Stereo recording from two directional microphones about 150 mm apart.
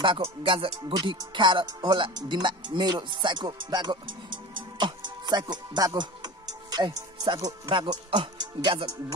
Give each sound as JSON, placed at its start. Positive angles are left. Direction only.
{"t": 0.0, "sound": "speech", "side_deg": -35}